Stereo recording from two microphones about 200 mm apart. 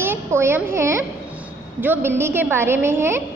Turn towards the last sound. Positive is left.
turn(degrees=-10)  # may be behind; listen again after turning